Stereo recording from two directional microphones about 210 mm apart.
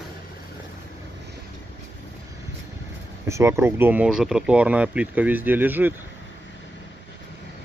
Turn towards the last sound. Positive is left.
turn(degrees=-10)  # may be behind; listen again after turning